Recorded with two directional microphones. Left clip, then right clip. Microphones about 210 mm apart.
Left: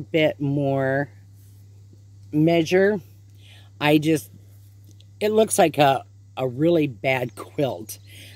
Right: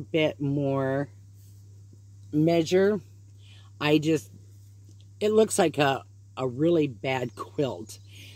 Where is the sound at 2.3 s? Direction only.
15° left (ahead or behind).